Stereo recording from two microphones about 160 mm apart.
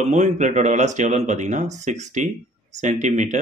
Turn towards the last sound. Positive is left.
turn(degrees=-50)  # may be behind; listen again after turning